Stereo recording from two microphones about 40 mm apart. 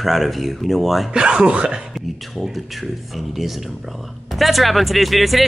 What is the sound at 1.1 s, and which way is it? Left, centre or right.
Speech, right.